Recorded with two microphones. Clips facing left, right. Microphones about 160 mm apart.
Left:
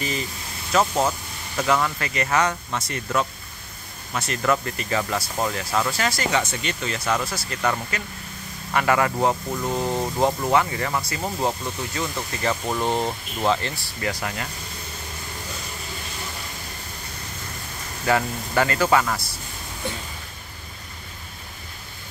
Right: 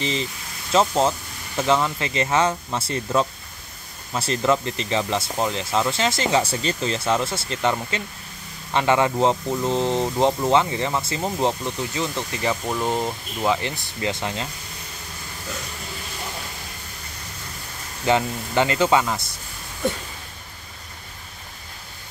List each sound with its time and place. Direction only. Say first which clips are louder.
0.0 s speech: right 2 dB; 25° right (ahead or behind)
12.6 s speech: even; 5° left (ahead or behind)
13.5 s speech: even; 15° right (ahead or behind)
18.0 s speech: right 2 dB; 20° right (ahead or behind)